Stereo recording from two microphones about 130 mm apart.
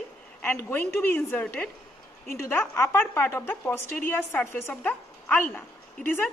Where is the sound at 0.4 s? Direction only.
15° left (ahead or behind).